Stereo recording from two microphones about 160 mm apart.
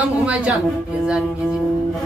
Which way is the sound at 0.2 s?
5° right (ahead or behind).